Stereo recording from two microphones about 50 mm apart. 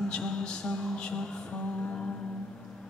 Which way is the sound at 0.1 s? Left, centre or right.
Centre.